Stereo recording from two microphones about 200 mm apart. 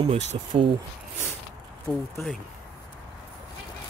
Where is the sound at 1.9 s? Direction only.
5° left (ahead or behind).